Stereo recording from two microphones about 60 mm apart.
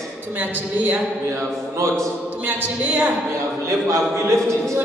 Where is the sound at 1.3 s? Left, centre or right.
Right.